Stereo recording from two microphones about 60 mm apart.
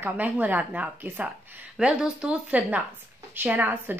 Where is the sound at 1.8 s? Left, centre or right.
Centre.